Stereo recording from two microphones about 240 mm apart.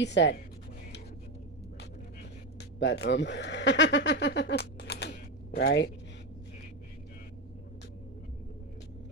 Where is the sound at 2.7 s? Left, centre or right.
Left.